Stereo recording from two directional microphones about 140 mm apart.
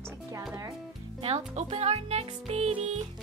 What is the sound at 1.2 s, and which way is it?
Music, 50° right (ahead or behind).